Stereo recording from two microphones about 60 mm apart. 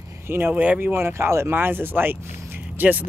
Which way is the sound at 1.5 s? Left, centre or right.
Right.